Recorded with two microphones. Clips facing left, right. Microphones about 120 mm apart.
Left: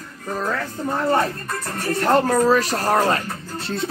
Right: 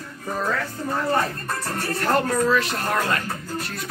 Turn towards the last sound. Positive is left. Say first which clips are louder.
# left 5 dB
turn(degrees=35)  # may be behind; listen again after turning